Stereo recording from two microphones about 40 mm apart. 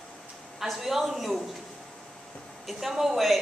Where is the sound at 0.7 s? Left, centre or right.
Centre.